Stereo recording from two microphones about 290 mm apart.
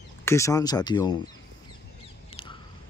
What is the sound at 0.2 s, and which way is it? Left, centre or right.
Speech, centre.